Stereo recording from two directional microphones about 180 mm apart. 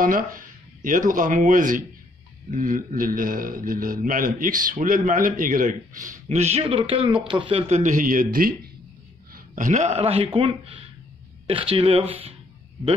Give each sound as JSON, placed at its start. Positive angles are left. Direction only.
{"t": 0.0, "sound": "a man's voice", "side_deg": -50}